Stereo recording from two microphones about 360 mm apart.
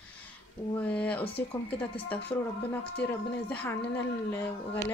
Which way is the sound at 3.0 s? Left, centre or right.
Centre.